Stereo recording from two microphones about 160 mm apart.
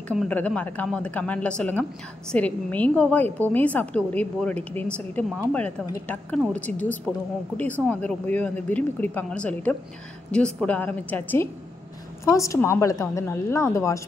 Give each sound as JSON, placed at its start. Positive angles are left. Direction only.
{"t": 0.1, "sound": "a woman's voice", "side_deg": 5}
{"t": 6.5, "sound": "a woman's voice", "side_deg": 10}